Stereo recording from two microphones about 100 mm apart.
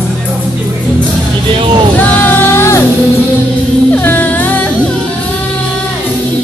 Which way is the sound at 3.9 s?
20° left (ahead or behind).